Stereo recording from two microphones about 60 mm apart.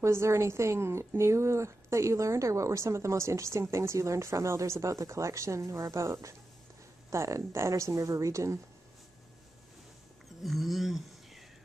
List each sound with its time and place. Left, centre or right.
0.0 s a woman's voice: right
10.4 s speech: centre